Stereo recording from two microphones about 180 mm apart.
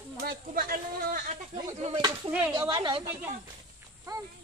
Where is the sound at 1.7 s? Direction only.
35° right (ahead or behind).